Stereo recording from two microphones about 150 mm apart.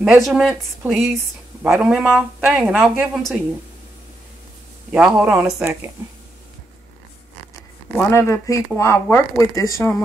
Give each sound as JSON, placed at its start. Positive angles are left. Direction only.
{"t": 0.0, "sound": "speech", "side_deg": 0}
{"t": 4.9, "sound": "speech", "side_deg": -5}
{"t": 8.1, "sound": "speech", "side_deg": 20}